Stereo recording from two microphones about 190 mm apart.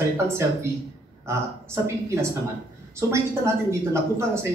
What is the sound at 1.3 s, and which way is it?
Speech, 15° right (ahead or behind).